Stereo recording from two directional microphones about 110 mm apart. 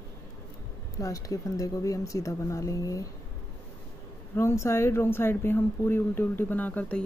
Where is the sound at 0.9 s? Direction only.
30° left (ahead or behind).